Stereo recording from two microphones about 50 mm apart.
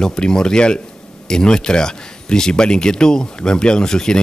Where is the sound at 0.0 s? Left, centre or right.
Centre.